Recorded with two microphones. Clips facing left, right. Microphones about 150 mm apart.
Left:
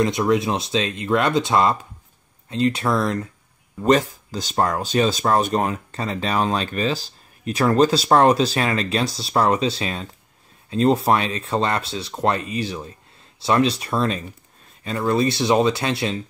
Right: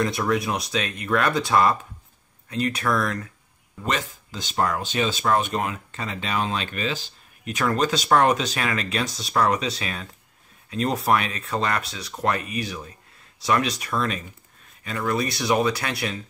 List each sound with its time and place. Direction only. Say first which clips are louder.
0.0 s speech: left 4 dB; 20° left (ahead or behind)
3.8 s speech: left 10 dB; 40° left (ahead or behind)